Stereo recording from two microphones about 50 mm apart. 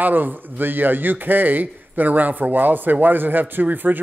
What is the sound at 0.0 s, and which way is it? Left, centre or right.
A man's voice, right.